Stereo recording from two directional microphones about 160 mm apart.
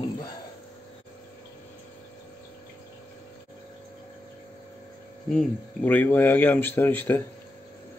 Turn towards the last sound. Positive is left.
turn(degrees=10)  # may be behind; listen again after turning